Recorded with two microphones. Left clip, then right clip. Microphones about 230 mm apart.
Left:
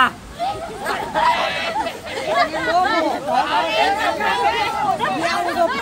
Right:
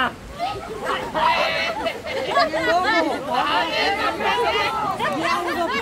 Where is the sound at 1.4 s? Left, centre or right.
Centre.